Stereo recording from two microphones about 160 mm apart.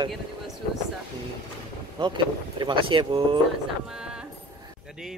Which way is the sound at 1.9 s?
30° right (ahead or behind).